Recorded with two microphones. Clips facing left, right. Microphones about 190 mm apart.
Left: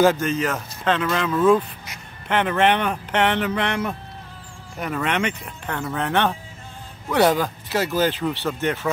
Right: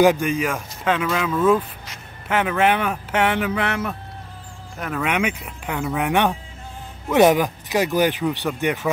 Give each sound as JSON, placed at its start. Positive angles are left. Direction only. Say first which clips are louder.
{"t": 0.0, "sound": "speech", "louder": "right 1 dB", "side_deg": -15}